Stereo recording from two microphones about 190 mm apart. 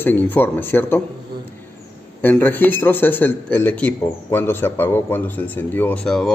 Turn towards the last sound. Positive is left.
turn(degrees=5)  # may be behind; listen again after turning